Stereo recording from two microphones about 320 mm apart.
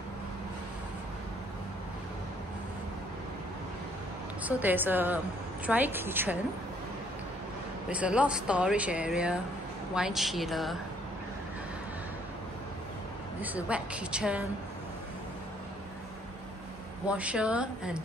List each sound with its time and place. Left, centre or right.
4.4 s a woman's voice: centre
7.9 s speech: centre
13.4 s speech: centre
17.1 s speech: centre